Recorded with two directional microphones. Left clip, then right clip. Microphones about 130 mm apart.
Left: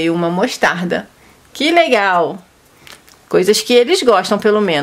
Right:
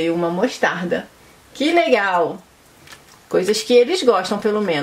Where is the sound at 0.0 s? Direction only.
35° left (ahead or behind).